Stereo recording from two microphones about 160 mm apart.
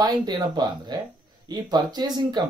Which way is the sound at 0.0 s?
25° right (ahead or behind).